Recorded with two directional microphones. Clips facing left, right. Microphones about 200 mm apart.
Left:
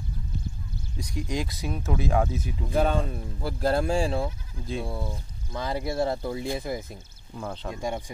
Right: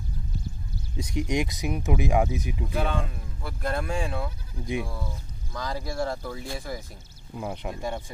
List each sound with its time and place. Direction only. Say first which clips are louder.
0.9 s speech: right 4 dB; 20° right (ahead or behind)
2.7 s speech: left 6 dB; 40° left (ahead or behind); by 7.0 s 20° left (ahead or behind)
7.3 s speech: right 1 dB; 15° right (ahead or behind)
7.7 s speech: left 1 dB; 15° left (ahead or behind)